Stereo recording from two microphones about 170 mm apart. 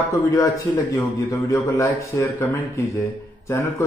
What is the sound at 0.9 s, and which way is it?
A man's voice, 20° left (ahead or behind).